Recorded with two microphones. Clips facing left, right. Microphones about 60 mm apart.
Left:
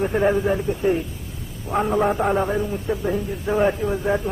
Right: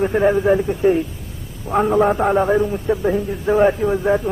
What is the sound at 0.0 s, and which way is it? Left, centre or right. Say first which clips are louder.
A man's voice: right 4 dB; centre.